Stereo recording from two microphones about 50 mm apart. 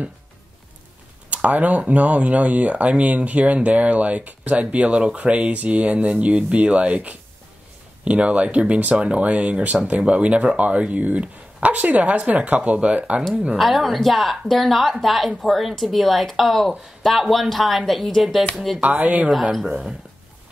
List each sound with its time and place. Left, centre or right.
1.3 s speech: right
13.6 s speech: centre
18.8 s speech: right